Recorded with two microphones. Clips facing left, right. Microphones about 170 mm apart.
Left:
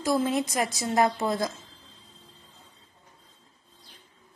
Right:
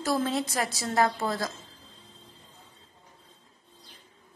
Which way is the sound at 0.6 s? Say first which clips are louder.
Left 1 dB; 20° left (ahead or behind).